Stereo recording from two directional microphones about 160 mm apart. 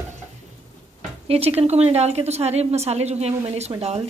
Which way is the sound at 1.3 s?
40° right (ahead or behind).